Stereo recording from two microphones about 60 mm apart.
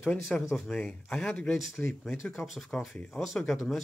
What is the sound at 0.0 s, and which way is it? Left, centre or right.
Speech, left.